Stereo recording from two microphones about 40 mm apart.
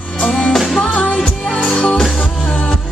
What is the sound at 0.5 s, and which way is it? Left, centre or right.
Music, centre.